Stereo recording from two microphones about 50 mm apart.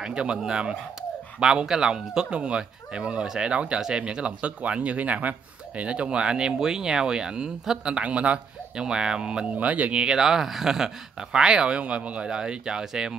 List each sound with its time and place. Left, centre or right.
0.0 s speech: centre
9.6 s speech: right
10.0 s speech: centre